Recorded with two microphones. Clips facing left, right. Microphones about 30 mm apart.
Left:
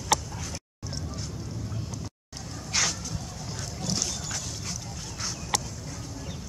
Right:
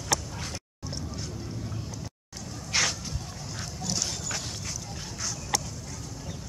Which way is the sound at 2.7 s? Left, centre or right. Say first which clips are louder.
Right 1 dB; centre.